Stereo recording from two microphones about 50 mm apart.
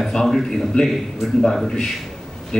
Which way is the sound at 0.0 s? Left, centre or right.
Centre.